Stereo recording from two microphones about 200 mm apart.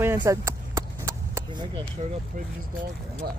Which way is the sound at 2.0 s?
30° right (ahead or behind).